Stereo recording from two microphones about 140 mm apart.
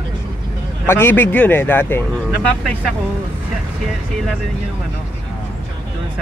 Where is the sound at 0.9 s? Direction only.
15° left (ahead or behind).